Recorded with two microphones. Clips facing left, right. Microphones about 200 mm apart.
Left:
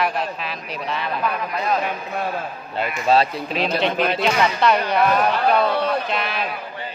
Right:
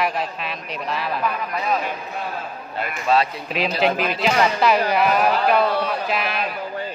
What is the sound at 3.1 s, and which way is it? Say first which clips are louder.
Speech: left 2 dB; 30° left (ahead or behind).